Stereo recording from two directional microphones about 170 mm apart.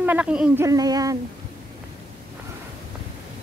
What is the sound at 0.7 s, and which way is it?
Speech, 20° right (ahead or behind).